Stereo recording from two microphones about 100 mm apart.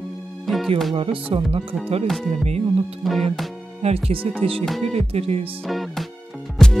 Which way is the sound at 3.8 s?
90° right.